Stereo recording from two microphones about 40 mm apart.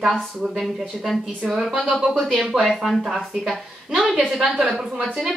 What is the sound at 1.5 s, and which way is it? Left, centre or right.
A woman's voice, centre.